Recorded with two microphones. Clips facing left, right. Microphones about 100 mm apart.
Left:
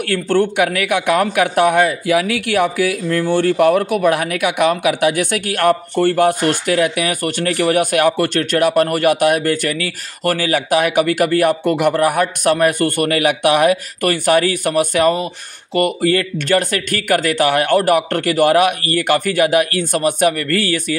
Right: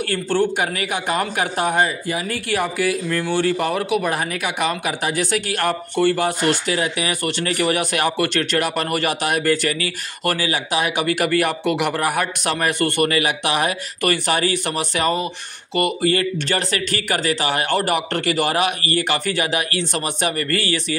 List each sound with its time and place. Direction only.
0.0 s a man's voice: 55° left (ahead or behind)